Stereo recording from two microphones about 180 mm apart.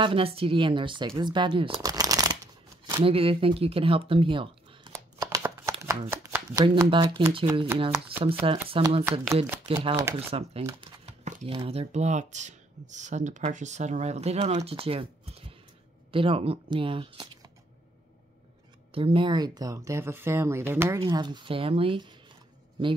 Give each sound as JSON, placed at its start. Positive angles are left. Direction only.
{"t": 0.0, "sound": "speech", "side_deg": -30}
{"t": 3.0, "sound": "speech", "side_deg": -30}
{"t": 4.9, "sound": "shuffling cards", "side_deg": -15}
{"t": 6.6, "sound": "speech", "side_deg": -25}
{"t": 10.7, "sound": "speech", "side_deg": -20}
{"t": 11.1, "sound": "speech", "side_deg": -40}
{"t": 18.9, "sound": "speech", "side_deg": -30}
{"t": 21.0, "sound": "speech", "side_deg": -25}